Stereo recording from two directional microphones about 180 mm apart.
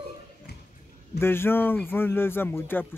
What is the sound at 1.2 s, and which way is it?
Speech, 15° left (ahead or behind).